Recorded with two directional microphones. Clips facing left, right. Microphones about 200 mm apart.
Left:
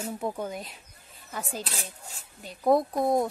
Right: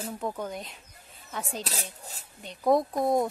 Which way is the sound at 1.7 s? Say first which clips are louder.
Right 1 dB; 40° right (ahead or behind).